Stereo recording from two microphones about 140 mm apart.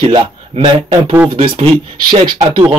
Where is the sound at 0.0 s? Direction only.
35° right (ahead or behind).